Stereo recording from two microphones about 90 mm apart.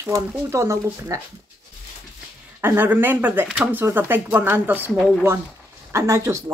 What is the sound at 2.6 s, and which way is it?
Speech, 20° right (ahead or behind).